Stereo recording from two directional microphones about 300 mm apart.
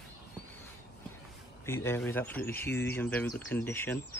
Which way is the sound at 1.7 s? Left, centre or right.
Centre.